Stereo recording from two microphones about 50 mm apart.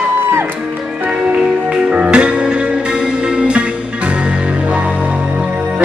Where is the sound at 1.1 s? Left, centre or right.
Centre.